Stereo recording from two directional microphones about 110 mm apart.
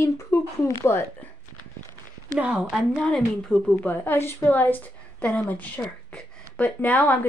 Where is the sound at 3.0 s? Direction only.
10° left (ahead or behind).